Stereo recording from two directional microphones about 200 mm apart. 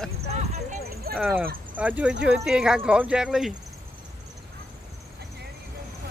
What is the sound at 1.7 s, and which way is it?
Speech, 10° right (ahead or behind).